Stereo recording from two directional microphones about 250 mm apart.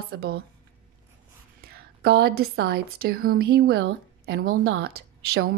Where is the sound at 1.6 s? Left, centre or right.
Right.